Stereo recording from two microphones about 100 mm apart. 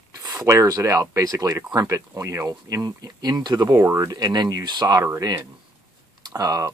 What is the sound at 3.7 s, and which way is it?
Speech, 30° right (ahead or behind).